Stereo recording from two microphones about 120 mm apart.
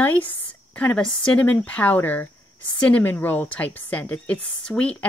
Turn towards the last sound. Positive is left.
turn(degrees=10)  # may be behind; listen again after turning